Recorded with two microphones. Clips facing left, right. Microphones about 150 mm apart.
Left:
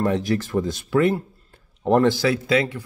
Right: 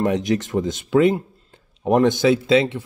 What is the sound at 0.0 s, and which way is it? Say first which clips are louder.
Speech: right 2 dB; 20° right (ahead or behind).